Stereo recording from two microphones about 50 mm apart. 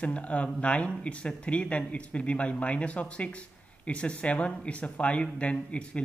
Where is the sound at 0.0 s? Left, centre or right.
Left.